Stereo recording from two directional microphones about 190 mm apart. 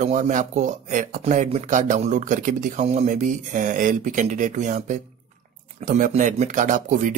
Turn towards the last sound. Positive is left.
turn(degrees=-40)  # may be behind; listen again after turning